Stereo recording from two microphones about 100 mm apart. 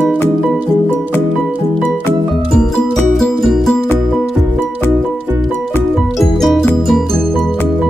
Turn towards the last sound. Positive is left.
turn(degrees=0)  # may be behind; listen again after turning